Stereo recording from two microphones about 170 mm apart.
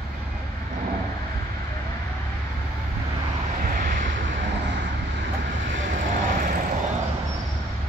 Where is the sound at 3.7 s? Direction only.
55° right (ahead or behind).